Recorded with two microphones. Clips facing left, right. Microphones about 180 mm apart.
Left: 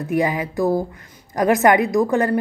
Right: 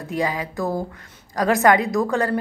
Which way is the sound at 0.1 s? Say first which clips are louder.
Left 4 dB; 20° left (ahead or behind).